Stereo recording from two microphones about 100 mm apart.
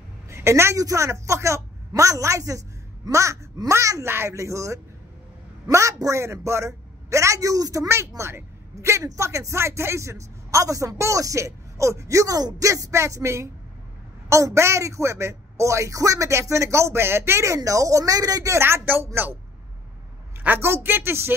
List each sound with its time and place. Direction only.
0.3 s a man's voice: 25° right (ahead or behind)
20.4 s speech: 25° right (ahead or behind)